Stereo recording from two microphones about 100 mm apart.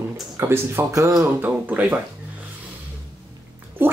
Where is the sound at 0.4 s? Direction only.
25° right (ahead or behind).